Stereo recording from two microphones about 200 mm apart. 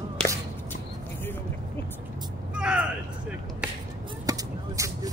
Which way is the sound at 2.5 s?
5° right (ahead or behind).